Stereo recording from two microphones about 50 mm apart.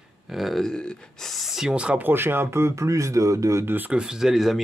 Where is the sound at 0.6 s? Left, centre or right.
Centre.